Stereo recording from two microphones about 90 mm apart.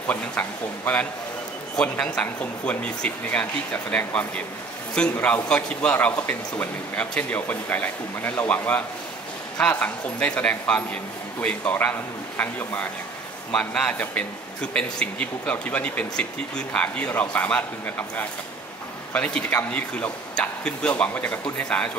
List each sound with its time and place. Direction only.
0.1 s speech: 20° left (ahead or behind)